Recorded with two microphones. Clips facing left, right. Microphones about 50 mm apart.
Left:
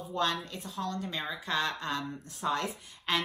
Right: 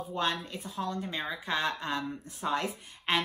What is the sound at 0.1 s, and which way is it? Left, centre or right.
Speech, right.